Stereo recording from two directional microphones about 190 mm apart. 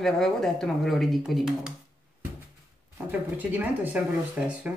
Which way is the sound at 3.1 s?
10° right (ahead or behind).